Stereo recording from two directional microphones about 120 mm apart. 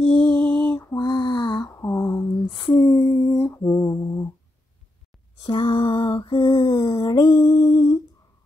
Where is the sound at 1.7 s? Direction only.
25° left (ahead or behind).